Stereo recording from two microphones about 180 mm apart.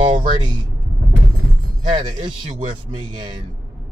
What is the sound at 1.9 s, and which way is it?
Speech, 25° right (ahead or behind).